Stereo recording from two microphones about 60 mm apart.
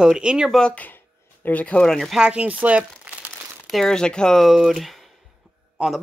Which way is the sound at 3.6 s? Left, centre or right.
Centre.